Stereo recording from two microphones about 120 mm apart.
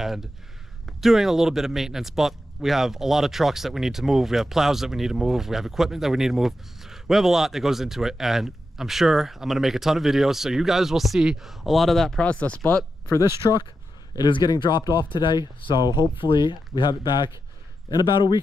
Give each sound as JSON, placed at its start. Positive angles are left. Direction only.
{"t": 0.0, "sound": "speech", "side_deg": 0}
{"t": 13.4, "sound": "speech", "side_deg": 35}